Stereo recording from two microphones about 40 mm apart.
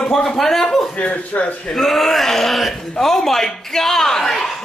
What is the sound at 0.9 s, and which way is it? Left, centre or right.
Speech, left.